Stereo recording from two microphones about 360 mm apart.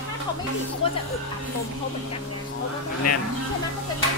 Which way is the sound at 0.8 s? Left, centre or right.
Centre.